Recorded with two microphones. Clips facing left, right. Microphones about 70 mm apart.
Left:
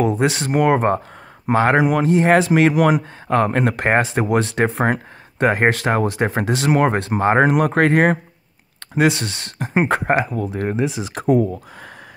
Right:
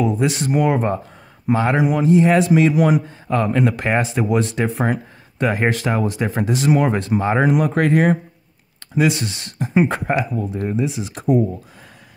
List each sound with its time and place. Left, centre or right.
0.2 s speech: left
4.0 s speech: left
6.2 s speech: left
6.7 s speech: left
10.4 s speech: left